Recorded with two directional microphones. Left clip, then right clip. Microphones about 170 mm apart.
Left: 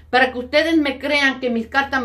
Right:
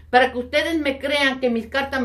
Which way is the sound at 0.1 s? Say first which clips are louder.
Left 1 dB; 20° left (ahead or behind).